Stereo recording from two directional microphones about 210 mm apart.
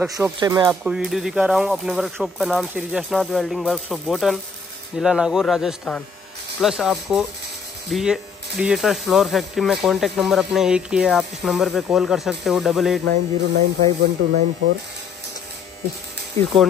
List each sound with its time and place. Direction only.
0.2 s speech: 15° right (ahead or behind)
0.7 s speech: 5° right (ahead or behind)
13.1 s speech: 35° right (ahead or behind)